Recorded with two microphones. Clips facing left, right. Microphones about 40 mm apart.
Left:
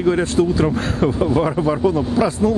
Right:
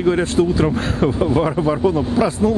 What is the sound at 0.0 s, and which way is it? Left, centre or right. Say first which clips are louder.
Speech: even; centre.